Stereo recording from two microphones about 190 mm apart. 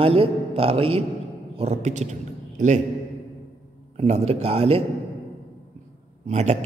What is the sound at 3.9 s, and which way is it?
Speech, 35° right (ahead or behind).